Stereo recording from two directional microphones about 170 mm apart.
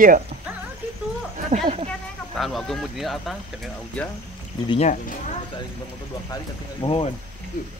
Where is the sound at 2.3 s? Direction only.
Centre (ahead or behind).